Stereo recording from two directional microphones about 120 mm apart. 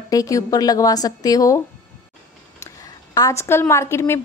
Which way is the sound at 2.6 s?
30° left (ahead or behind).